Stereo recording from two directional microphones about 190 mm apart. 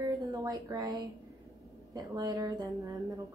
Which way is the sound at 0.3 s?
15° right (ahead or behind).